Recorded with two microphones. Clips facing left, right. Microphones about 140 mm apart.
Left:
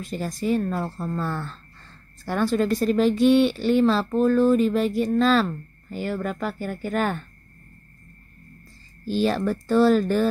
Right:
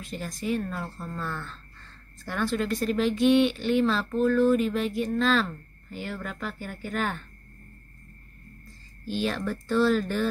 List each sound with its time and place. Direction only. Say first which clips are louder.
0.0 s speech: left 6 dB; 35° left (ahead or behind)
9.0 s speech: left 6 dB; 35° left (ahead or behind)